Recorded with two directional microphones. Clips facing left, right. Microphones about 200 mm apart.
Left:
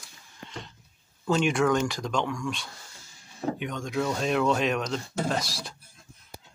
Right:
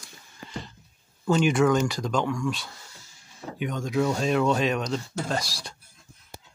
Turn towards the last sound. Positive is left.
turn(degrees=0)  # may be behind; listen again after turning